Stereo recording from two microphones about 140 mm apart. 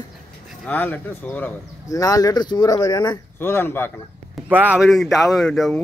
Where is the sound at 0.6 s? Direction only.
10° left (ahead or behind).